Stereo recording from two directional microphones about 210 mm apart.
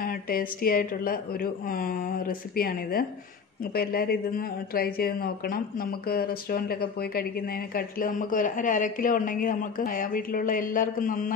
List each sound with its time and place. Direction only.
0.0 s a woman's voice: 45° left (ahead or behind)